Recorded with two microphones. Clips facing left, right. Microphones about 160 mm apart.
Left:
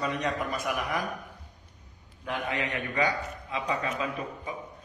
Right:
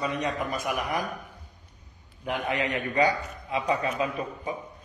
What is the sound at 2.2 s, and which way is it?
A man's voice, 20° right (ahead or behind).